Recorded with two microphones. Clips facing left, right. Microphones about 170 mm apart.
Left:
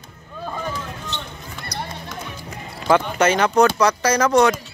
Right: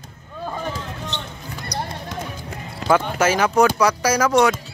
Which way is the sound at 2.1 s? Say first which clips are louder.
Right 2 dB; 50° right (ahead or behind).